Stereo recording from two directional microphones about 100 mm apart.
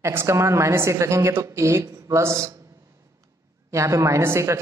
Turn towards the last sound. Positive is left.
turn(degrees=-25)  # may be behind; listen again after turning